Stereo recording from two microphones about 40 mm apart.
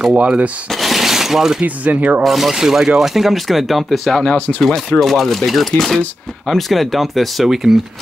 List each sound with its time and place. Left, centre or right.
0.1 s speech: right
0.7 s a sound: centre
1.6 s speech: right
2.2 s speech: centre
4.6 s speech: centre